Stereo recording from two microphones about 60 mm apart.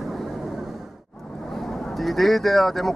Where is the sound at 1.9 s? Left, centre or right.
Centre.